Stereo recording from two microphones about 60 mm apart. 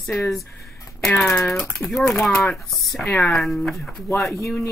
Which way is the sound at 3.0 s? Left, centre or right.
Left.